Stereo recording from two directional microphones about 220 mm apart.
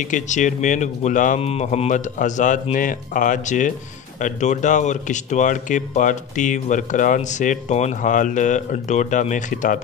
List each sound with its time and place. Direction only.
0.0 s speech: 35° left (ahead or behind)